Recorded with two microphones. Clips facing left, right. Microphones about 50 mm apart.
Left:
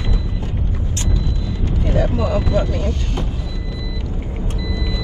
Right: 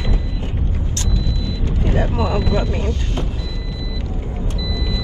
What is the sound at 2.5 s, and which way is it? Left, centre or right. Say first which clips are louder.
Speech: left 1 dB; right.